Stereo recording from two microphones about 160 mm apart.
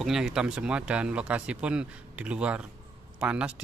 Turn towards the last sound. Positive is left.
turn(degrees=-5)  # may be behind; listen again after turning